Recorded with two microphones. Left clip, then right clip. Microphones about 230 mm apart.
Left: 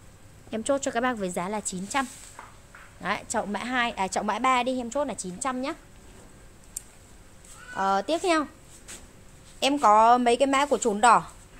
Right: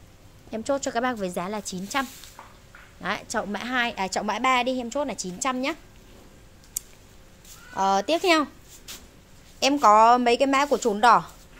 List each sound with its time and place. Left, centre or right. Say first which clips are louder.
0.5 s a woman's voice: even; centre
6.8 s a sound: right 6 dB; right
7.7 s a child's voice: right 3 dB; centre